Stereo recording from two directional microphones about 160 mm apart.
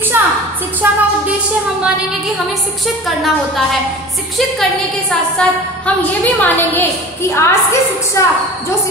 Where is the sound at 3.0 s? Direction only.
Centre (ahead or behind).